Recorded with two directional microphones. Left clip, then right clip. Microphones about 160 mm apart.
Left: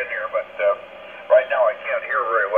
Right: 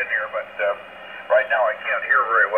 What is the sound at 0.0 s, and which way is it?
Radio, 30° left (ahead or behind).